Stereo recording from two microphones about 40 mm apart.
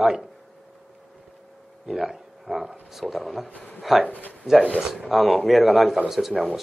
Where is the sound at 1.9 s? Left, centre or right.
Centre.